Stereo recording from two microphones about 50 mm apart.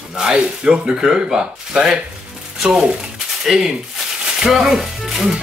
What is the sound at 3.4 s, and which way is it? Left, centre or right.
Speech, centre.